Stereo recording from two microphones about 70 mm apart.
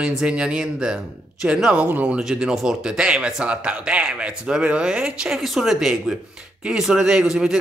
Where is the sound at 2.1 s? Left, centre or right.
Centre.